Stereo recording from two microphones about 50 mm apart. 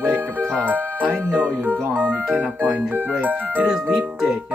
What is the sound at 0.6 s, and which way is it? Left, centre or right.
Music, right.